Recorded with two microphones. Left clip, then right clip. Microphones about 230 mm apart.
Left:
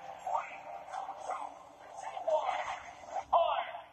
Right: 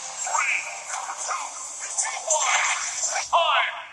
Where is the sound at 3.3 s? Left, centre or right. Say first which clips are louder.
Right 7 dB; right.